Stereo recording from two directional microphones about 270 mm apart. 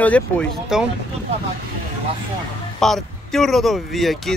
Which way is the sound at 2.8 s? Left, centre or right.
Centre.